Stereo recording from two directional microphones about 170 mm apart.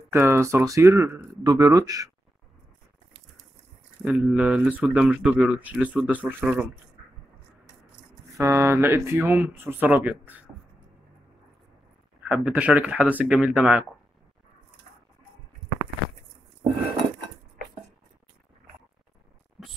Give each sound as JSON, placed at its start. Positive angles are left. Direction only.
{"t": 0.1, "sound": "speech", "side_deg": -15}
{"t": 4.0, "sound": "speech", "side_deg": -5}
{"t": 8.4, "sound": "speech", "side_deg": -15}
{"t": 12.3, "sound": "speech", "side_deg": -5}
{"t": 19.6, "sound": "a sound", "side_deg": 0}